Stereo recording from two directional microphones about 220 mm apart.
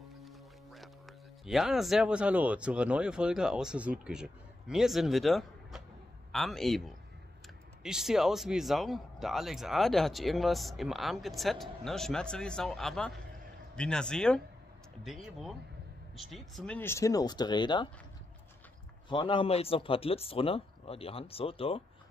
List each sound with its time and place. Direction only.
0.2 s music: centre (ahead or behind)
1.4 s speech: centre (ahead or behind)
16.2 s speech: centre (ahead or behind); by 17.8 s 20° left (ahead or behind)
19.0 s speech: 20° left (ahead or behind)